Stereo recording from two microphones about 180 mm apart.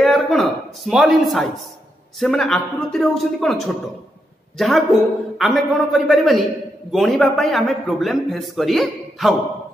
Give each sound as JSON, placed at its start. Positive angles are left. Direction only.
{"t": 0.0, "sound": "a man's voice", "side_deg": 0}